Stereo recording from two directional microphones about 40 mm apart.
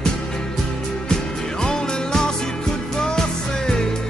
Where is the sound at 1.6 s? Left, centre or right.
Centre.